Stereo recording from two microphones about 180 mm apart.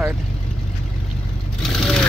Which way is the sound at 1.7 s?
Centre (ahead or behind).